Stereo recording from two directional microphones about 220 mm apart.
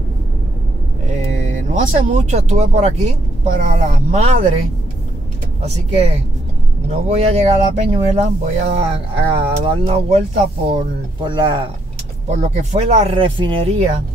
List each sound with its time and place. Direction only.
1.7 s speech: 35° right (ahead or behind)
5.6 s speech: 30° right (ahead or behind)